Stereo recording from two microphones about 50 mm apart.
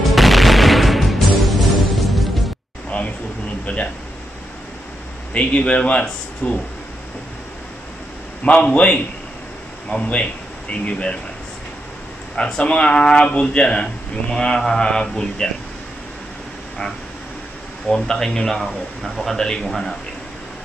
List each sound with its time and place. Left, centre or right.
0.0 s music: centre
3.6 s speech: left
5.3 s speech: left
8.6 s speech: left
12.4 s speech: centre
17.8 s speech: centre